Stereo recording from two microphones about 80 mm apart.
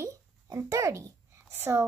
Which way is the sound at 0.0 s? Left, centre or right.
Right.